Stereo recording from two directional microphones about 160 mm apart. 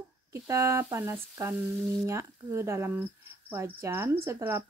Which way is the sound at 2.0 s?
15° right (ahead or behind).